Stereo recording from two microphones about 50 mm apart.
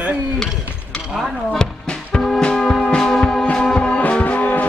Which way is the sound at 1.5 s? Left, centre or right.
Centre.